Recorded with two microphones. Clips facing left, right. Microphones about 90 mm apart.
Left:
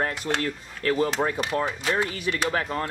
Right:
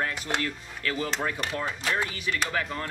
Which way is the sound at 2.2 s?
35° left (ahead or behind).